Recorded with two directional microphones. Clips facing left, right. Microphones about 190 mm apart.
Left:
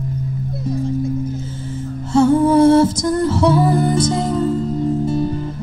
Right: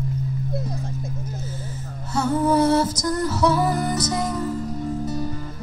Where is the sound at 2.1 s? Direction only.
25° left (ahead or behind).